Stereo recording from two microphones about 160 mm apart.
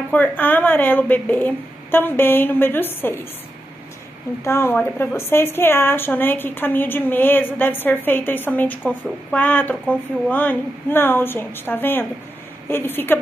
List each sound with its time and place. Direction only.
0.1 s a woman's voice: 10° left (ahead or behind)
4.5 s a woman's voice: 15° left (ahead or behind)